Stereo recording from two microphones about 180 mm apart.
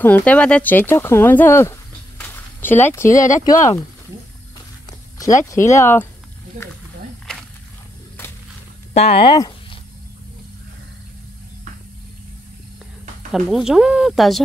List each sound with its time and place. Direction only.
0.0 s speech: 10° left (ahead or behind)
5.2 s speech: 15° left (ahead or behind)
6.5 s speech: 45° right (ahead or behind)
8.9 s speech: 35° left (ahead or behind)
13.3 s speech: centre (ahead or behind)